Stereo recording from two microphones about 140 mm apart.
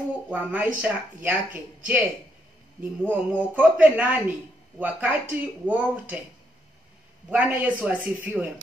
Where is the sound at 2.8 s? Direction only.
10° right (ahead or behind).